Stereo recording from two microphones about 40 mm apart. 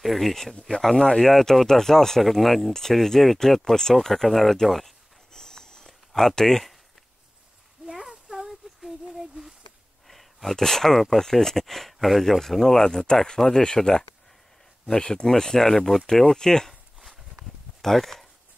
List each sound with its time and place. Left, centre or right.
0.0 s speech: centre
0.6 s speech: centre
1.3 s speech: centre
5.3 s a sound: centre
7.8 s a sound: centre
10.0 s speech: centre
17.8 s speech: centre